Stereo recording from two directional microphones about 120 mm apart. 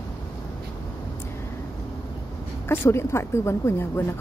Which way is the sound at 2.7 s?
20° left (ahead or behind).